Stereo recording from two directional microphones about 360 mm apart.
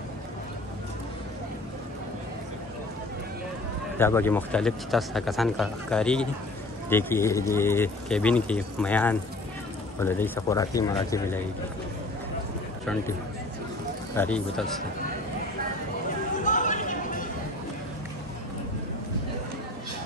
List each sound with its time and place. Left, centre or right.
4.0 s speech: centre
14.1 s speech: centre
16.4 s chatter: left